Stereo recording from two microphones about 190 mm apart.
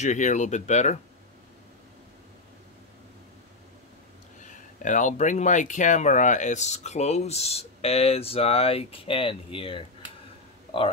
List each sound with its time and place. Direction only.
0.0 s speech: 40° left (ahead or behind)
4.4 s speech: 40° left (ahead or behind)